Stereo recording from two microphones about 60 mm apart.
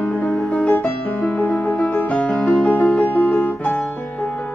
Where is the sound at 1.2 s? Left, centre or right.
Left.